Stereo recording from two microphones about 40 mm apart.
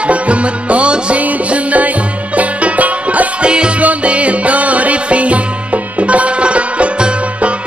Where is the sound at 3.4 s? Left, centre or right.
Right.